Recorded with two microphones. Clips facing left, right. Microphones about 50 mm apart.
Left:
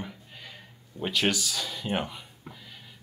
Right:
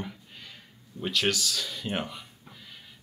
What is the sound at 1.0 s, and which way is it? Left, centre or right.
Speech, centre.